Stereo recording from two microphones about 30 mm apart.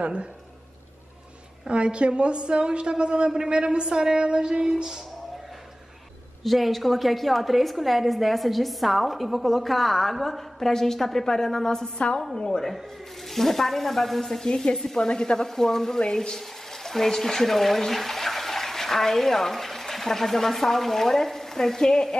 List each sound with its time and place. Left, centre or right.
0.0 s a woman's voice: right
1.7 s a woman's voice: right
3.3 s a woman's voice: right
3.5 s a woman's voice: right
6.4 s a woman's voice: centre
14.4 s speech: left
15.4 s a woman's voice: centre
16.3 s speech: centre